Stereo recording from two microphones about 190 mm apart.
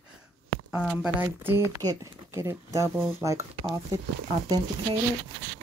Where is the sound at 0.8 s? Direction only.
5° right (ahead or behind).